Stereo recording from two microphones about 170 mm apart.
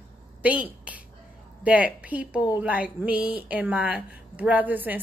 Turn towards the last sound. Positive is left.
turn(degrees=-10)  # may be behind; listen again after turning